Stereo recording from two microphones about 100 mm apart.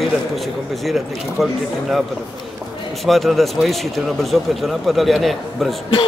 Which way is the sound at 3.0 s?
Centre (ahead or behind).